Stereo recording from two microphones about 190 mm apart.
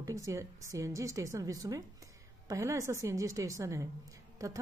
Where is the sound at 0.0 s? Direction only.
15° right (ahead or behind).